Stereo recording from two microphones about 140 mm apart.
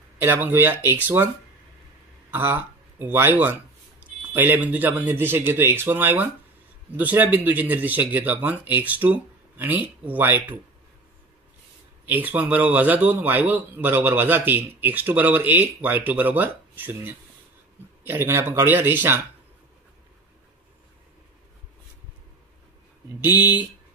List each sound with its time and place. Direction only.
0.2 s speech: 15° right (ahead or behind)
2.3 s speech: 15° right (ahead or behind)
12.1 s speech: 10° right (ahead or behind)
23.2 s speech: 15° right (ahead or behind)